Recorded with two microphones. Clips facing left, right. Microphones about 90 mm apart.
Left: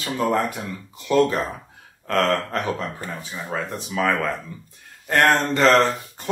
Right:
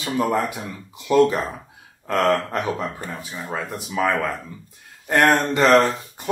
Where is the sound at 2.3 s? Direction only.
15° right (ahead or behind).